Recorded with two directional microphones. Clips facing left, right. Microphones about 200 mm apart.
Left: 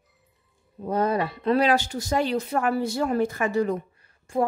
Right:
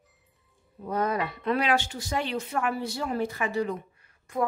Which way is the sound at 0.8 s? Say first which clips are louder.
Left 4 dB; 30° left (ahead or behind).